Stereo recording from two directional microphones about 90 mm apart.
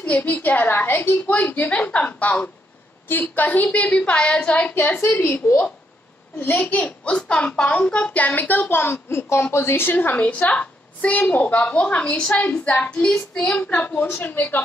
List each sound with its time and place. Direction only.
0.0 s a woman's voice: 20° left (ahead or behind)
6.4 s a child's voice: 15° left (ahead or behind)
13.6 s a woman's voice: 20° left (ahead or behind)